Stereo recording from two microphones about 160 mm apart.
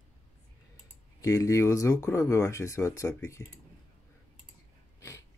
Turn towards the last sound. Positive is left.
turn(degrees=20)  # may be behind; listen again after turning